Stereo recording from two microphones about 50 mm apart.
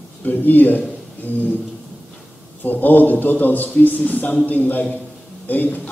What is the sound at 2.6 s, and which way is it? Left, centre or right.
A man's voice, left.